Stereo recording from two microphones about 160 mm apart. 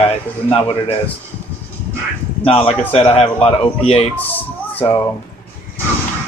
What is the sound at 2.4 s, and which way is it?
Speech, 40° left (ahead or behind).